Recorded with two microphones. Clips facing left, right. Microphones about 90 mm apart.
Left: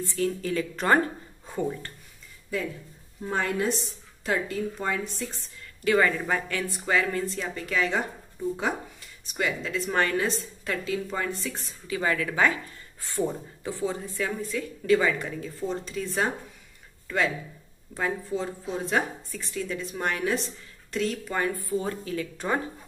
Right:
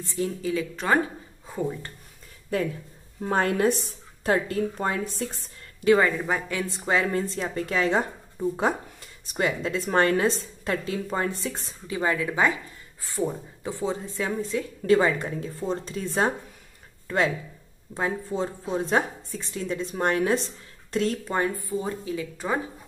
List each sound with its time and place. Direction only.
0.0 s a woman's voice: 15° right (ahead or behind)
3.2 s a woman's voice: 50° right (ahead or behind)
5.9 s speech: 20° right (ahead or behind)
9.2 s a woman's voice: 40° right (ahead or behind); by 22.3 s 15° right (ahead or behind)